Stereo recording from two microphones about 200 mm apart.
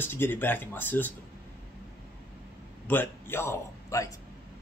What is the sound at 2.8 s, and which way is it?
A man's voice, 10° left (ahead or behind).